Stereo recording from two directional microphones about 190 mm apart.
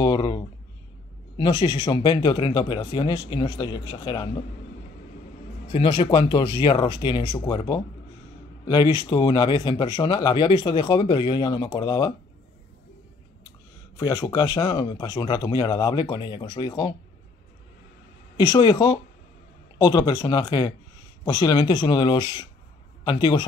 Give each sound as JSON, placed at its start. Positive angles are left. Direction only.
{"t": 0.0, "sound": "a sound", "side_deg": 20}
{"t": 1.3, "sound": "speech", "side_deg": 25}
{"t": 5.7, "sound": "speech", "side_deg": 30}
{"t": 13.9, "sound": "speech", "side_deg": 20}
{"t": 18.4, "sound": "speech", "side_deg": 20}